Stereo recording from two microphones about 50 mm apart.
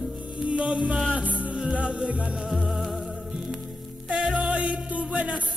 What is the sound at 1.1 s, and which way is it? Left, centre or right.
Music, right.